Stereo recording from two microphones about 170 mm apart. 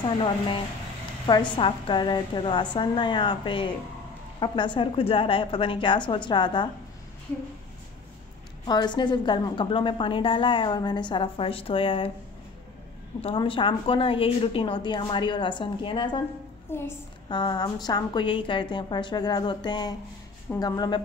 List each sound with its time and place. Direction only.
1.2 s a woman's voice: 25° left (ahead or behind)
8.6 s a woman's voice: 25° left (ahead or behind)
13.2 s a woman's voice: 30° left (ahead or behind)
16.7 s a woman's voice: 15° left (ahead or behind)
17.3 s a woman's voice: 25° left (ahead or behind)